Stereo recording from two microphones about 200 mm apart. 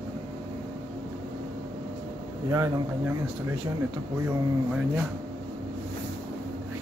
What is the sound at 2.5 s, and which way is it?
Speech, 15° right (ahead or behind).